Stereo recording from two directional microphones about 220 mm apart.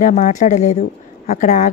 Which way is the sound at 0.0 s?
30° left (ahead or behind).